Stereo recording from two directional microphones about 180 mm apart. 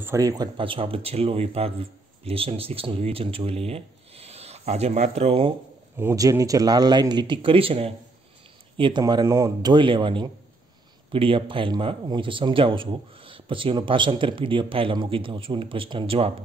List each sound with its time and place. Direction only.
0.0 s speech: 15° right (ahead or behind); by 5.5 s 35° right (ahead or behind)
5.9 s speech: 15° right (ahead or behind); by 16.3 s 30° right (ahead or behind)